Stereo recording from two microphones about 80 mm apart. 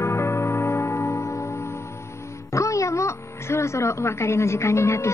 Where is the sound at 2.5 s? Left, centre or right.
Left.